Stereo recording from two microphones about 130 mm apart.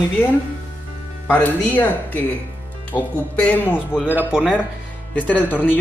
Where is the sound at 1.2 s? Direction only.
15° left (ahead or behind).